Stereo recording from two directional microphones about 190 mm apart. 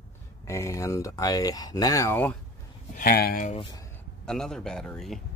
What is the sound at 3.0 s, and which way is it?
Speech, 50° left (ahead or behind).